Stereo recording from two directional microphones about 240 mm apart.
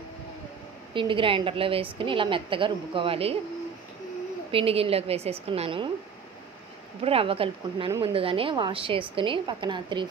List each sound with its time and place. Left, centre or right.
0.9 s speech: right
4.5 s speech: right
7.0 s speech: right